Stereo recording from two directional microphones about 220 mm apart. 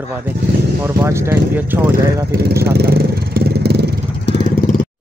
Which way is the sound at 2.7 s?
45° right (ahead or behind).